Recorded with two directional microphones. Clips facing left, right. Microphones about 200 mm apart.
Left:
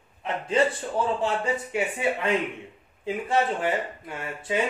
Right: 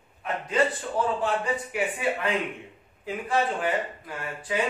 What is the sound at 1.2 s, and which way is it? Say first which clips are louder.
A man's voice: left 1 dB; 25° left (ahead or behind).